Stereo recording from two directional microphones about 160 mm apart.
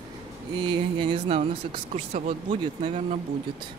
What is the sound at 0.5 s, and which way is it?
Speech, 30° right (ahead or behind).